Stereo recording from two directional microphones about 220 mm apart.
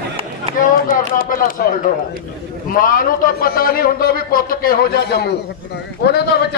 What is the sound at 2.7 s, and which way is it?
A man's voice, 40° left (ahead or behind).